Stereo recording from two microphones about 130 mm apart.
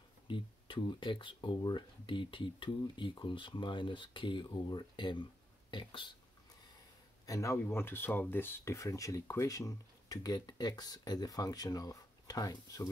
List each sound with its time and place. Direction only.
0.3 s speech: 35° left (ahead or behind)
7.2 s speech: 25° left (ahead or behind)